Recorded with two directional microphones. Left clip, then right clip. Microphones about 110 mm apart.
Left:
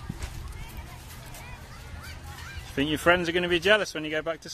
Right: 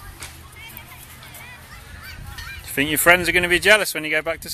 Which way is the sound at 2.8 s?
30° right (ahead or behind).